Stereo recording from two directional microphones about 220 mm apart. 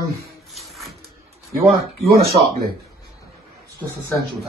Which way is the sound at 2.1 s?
45° right (ahead or behind).